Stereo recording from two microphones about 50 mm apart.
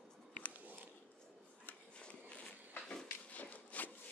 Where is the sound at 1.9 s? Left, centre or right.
Left.